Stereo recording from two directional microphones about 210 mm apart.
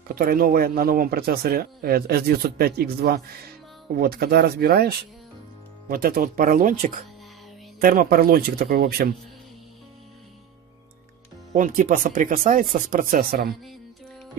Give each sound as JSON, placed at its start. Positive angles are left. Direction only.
{"t": 0.1, "sound": "speech", "side_deg": -45}
{"t": 11.5, "sound": "speech", "side_deg": -35}